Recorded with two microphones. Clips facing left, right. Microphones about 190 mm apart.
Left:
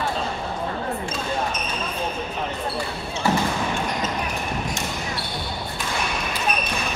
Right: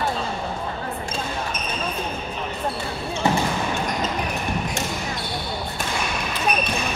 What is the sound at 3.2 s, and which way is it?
Basketball bounce, 20° right (ahead or behind).